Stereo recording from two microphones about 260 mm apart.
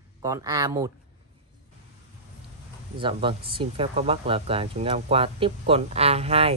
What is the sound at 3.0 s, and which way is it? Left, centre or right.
Speech, centre.